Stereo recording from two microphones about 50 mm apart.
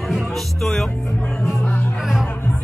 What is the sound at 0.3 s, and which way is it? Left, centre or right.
Music, centre.